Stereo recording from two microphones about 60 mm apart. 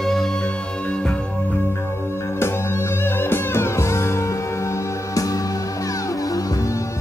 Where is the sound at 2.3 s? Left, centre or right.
Left.